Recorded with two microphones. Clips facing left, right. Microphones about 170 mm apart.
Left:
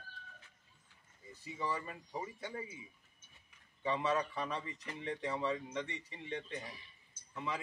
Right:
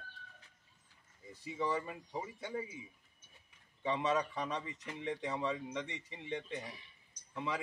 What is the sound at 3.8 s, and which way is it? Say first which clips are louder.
A man's voice: right 1 dB; 20° right (ahead or behind).